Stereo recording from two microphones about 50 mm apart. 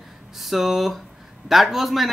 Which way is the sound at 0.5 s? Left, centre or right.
Centre.